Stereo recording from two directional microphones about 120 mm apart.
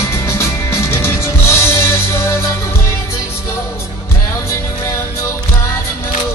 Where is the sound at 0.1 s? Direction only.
20° left (ahead or behind).